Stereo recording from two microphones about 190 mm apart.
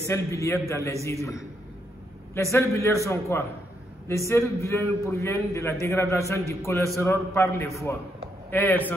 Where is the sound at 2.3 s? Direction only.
15° left (ahead or behind).